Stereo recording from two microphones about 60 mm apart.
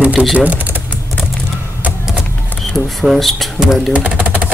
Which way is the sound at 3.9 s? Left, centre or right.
Right.